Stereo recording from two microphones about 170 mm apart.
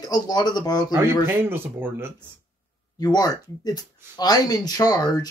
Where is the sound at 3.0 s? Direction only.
20° left (ahead or behind).